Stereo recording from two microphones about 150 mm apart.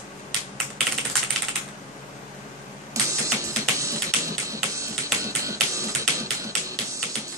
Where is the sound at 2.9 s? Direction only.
20° right (ahead or behind).